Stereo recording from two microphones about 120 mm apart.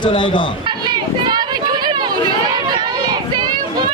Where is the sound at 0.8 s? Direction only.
35° right (ahead or behind).